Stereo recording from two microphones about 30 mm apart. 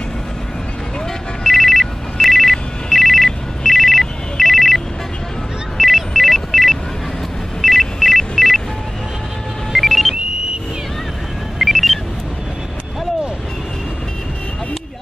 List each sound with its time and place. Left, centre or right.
1.4 s telephone bell ringing: centre
5.8 s telephone: centre
9.7 s a sound: centre
11.5 s music: centre